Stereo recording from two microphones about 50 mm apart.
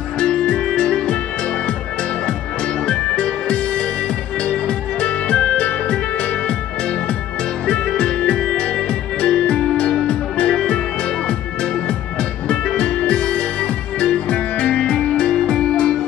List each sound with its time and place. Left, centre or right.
0.2 s music: centre
2.9 s music: centre
7.6 s music: centre